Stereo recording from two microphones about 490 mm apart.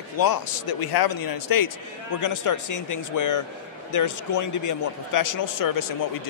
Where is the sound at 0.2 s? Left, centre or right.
Left.